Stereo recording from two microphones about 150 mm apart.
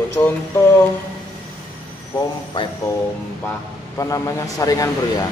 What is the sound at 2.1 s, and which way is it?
Speech, 25° left (ahead or behind).